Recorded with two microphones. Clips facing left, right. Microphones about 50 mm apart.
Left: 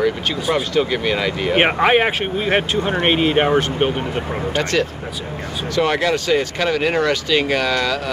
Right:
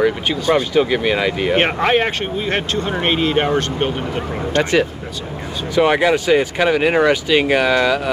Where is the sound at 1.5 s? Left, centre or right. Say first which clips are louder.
Left 3 dB; centre.